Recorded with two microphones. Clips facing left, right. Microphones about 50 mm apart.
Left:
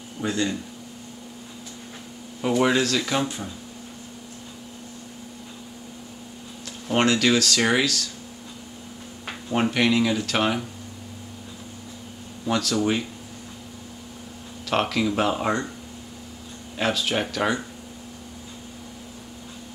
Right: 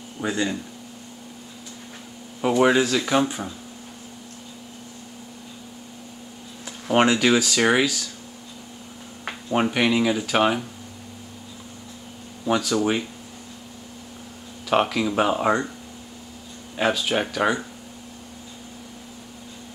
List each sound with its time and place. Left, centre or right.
0.2 s speech: centre
2.4 s speech: centre
6.9 s speech: centre
9.5 s speech: centre
12.4 s speech: centre
14.7 s speech: centre
16.7 s speech: centre